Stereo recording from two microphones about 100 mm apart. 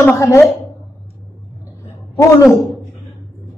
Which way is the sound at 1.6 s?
30° left (ahead or behind).